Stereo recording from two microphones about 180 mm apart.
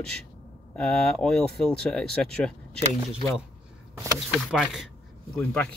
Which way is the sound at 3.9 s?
15° right (ahead or behind).